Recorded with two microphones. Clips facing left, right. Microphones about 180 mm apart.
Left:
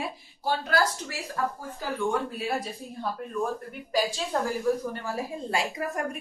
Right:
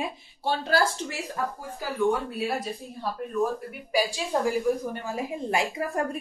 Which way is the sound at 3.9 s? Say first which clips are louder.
Right 1 dB; 10° right (ahead or behind).